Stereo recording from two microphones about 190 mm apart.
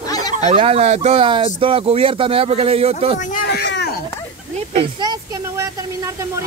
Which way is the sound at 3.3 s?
60° left (ahead or behind).